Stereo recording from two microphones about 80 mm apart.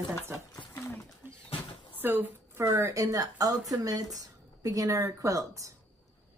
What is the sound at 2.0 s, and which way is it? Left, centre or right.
Speech, right.